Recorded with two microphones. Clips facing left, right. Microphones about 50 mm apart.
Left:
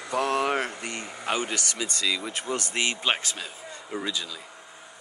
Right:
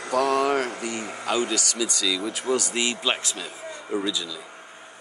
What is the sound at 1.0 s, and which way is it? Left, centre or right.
Speech, right.